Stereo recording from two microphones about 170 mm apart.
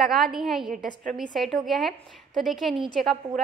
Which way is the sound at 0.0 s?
Centre (ahead or behind).